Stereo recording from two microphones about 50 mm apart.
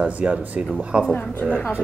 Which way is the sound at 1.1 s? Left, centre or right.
Left.